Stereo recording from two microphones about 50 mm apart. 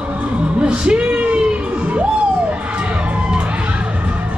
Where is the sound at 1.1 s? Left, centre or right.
Right.